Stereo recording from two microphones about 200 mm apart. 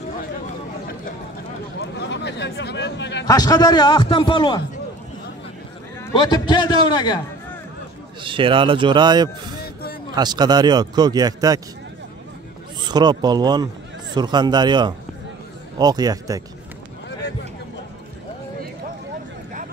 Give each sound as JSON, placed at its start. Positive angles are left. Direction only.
{"t": 1.8, "sound": "a sound", "side_deg": 60}
{"t": 3.3, "sound": "a man's voice", "side_deg": 20}
{"t": 6.1, "sound": "a man's voice", "side_deg": 20}
{"t": 8.2, "sound": "speech", "side_deg": -25}
{"t": 12.8, "sound": "speech", "side_deg": -20}